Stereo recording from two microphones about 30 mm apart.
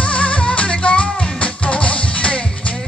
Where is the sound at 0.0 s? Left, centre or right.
Left.